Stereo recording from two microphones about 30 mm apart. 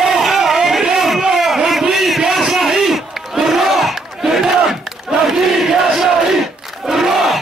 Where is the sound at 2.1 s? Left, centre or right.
Centre.